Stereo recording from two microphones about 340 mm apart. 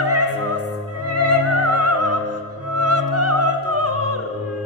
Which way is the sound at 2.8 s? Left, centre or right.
Right.